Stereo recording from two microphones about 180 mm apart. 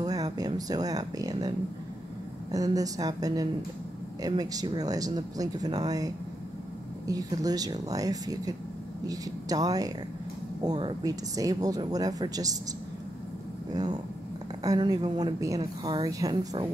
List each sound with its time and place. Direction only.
0.0 s speech: 20° right (ahead or behind)
2.5 s a woman's voice: 20° right (ahead or behind)
13.7 s a woman's voice: 20° right (ahead or behind)